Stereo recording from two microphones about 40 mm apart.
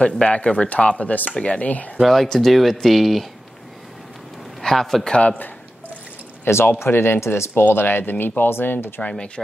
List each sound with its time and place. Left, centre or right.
0.0 s speech: left
2.0 s speech: centre
4.6 s a man's voice: centre
5.1 s a man's voice: left
6.4 s speech: left